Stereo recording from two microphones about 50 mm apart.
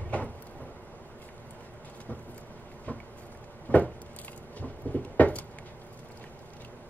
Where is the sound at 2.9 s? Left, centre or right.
Left.